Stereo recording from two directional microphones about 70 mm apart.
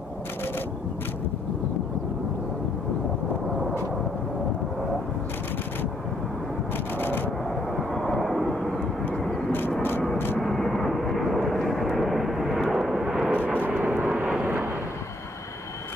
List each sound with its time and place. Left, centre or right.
7.0 s a sound: left
7.7 s vehicle: centre
9.8 s vehicle: left
10.4 s vehicle: centre
13.3 s vehicle: right
14.4 s artillery fire: right